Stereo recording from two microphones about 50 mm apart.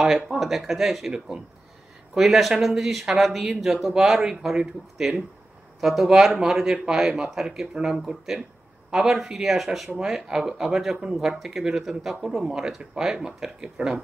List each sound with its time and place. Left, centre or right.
0.0 s speech: centre